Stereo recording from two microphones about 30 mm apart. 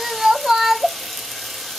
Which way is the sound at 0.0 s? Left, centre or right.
Centre.